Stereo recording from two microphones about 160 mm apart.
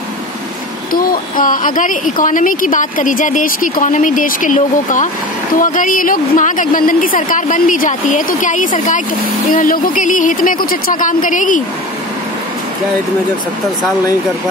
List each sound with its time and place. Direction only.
1.4 s a woman's voice: 55° left (ahead or behind)